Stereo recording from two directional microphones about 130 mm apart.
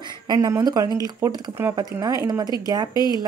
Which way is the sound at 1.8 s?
30° right (ahead or behind).